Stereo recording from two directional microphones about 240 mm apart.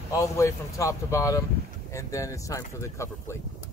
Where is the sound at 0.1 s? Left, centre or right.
Centre.